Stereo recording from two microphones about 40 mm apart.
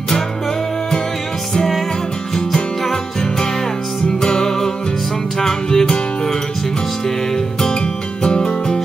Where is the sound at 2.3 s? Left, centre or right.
Centre.